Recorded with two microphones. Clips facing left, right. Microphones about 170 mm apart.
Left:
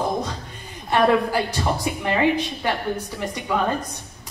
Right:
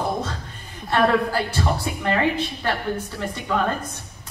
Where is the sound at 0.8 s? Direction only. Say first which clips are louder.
Left 1 dB; 15° left (ahead or behind).